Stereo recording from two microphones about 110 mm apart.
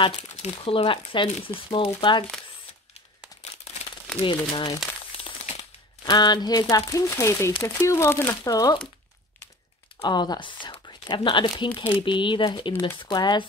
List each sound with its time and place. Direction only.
0.4 s speech: 65° left (ahead or behind); by 2.2 s 45° left (ahead or behind)
4.2 s speech: 45° left (ahead or behind); by 8.4 s 20° left (ahead or behind)
8.5 s speech: 35° left (ahead or behind)
10.0 s speech: 40° left (ahead or behind)